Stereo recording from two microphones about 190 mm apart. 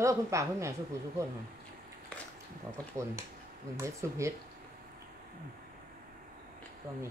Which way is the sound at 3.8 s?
15° right (ahead or behind).